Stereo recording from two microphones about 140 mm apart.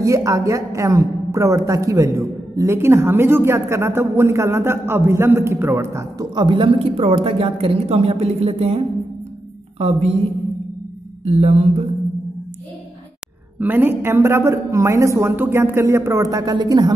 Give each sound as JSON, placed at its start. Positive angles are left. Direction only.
{"t": 0.0, "sound": "a woman's voice", "side_deg": -20}
{"t": 9.8, "sound": "mantra", "side_deg": -50}
{"t": 11.2, "sound": "mantra", "side_deg": -50}
{"t": 13.6, "sound": "a woman's voice", "side_deg": -15}